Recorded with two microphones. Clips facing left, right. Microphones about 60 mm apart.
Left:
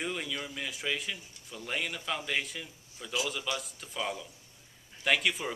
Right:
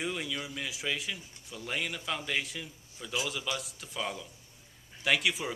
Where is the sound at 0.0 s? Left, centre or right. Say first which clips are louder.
Even; centre.